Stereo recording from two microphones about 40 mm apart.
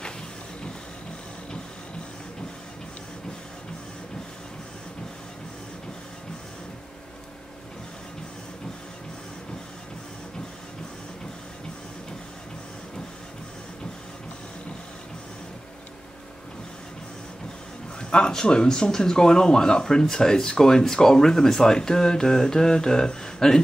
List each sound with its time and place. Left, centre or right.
18.1 s speech: centre